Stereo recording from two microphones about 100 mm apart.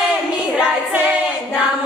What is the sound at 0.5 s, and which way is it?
Singing, 10° right (ahead or behind).